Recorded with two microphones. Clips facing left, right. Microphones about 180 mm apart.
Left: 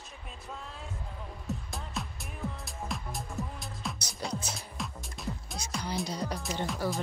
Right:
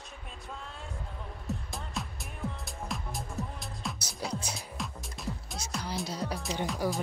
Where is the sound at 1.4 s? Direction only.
Centre (ahead or behind).